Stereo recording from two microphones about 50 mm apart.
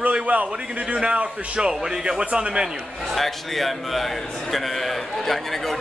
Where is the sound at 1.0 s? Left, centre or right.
Centre.